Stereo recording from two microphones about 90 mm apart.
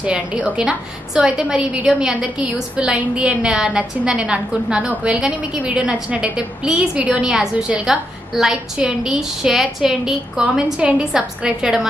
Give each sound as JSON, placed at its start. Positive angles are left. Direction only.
{"t": 0.0, "sound": "a woman's voice", "side_deg": -15}